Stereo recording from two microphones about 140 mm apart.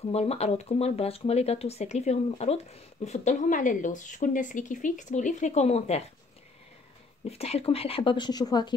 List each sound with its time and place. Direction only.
0.1 s speech: 50° left (ahead or behind)
7.2 s speech: 50° left (ahead or behind); by 8.7 s 30° left (ahead or behind)